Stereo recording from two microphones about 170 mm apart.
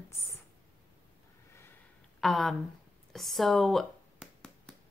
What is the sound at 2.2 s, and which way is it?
Speech, centre (ahead or behind).